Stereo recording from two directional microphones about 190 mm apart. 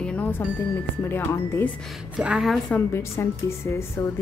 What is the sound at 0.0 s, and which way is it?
Music, 5° left (ahead or behind).